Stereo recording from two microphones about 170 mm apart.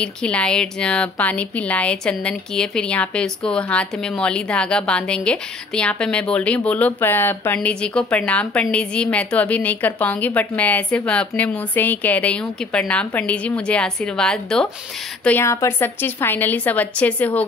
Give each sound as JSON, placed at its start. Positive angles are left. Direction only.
{"t": 0.0, "sound": "speech", "side_deg": 5}